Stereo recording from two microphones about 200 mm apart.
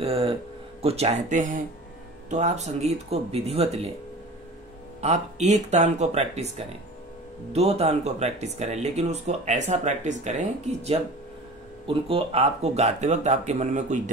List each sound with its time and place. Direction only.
0.0 s speech: 30° right (ahead or behind)
5.0 s speech: 35° right (ahead or behind)
7.5 s speech: 30° right (ahead or behind)